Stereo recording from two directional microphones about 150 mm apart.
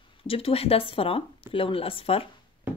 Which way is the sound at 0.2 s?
40° left (ahead or behind).